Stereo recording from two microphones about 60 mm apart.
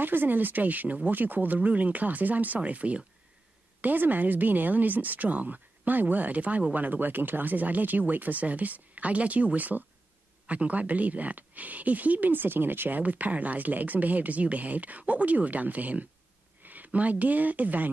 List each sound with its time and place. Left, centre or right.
0.0 s speech: right